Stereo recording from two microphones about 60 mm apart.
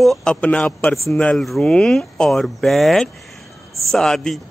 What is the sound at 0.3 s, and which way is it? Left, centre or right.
A man's voice, centre.